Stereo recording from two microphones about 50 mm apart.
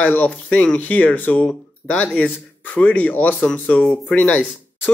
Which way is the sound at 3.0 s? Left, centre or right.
Left.